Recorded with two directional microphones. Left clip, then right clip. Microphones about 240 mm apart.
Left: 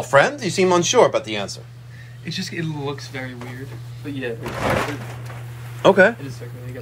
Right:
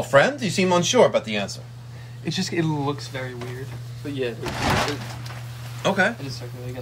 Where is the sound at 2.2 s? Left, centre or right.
Right.